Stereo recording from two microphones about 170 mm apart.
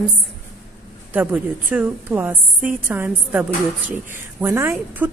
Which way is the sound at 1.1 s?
5° right (ahead or behind).